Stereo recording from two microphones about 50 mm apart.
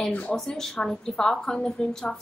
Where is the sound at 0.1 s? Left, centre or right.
Left.